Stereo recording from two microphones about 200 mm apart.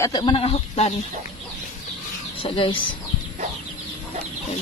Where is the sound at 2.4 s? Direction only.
25° left (ahead or behind).